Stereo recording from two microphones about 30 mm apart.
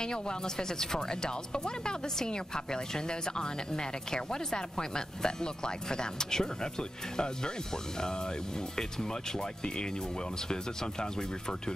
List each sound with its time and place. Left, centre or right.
0.0 s speech: left
10.5 s speech: left